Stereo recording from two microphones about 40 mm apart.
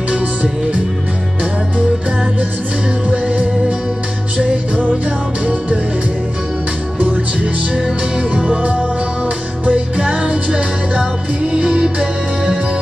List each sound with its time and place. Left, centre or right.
3.1 s music: right
8.4 s music: right